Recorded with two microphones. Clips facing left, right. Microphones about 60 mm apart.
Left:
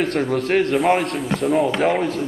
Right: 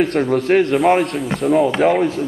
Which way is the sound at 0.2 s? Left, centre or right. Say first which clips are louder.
Right 3 dB; centre.